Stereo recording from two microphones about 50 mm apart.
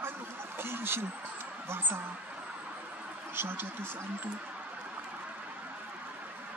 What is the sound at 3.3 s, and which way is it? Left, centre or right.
Speech, right.